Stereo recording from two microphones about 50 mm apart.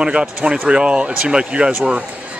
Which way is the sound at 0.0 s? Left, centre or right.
Centre.